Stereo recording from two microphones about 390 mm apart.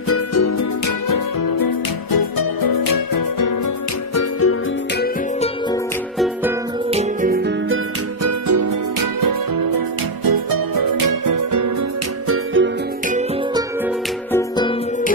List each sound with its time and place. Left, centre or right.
0.1 s music: left
4.1 s music: left
6.1 s music: centre
6.9 s music: centre
8.2 s music: right
12.3 s music: right